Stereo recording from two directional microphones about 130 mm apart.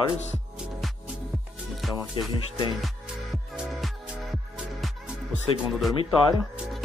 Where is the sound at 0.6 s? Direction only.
5° right (ahead or behind).